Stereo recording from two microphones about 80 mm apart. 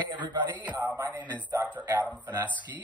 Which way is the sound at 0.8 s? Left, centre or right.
Right.